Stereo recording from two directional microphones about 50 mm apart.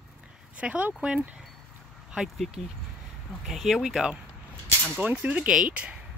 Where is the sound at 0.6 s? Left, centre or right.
Right.